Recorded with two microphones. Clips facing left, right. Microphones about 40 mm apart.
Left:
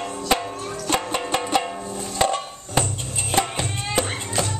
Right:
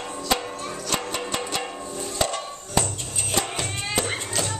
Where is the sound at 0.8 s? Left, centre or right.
Left.